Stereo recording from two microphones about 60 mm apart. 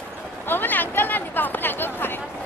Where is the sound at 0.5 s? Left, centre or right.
Left.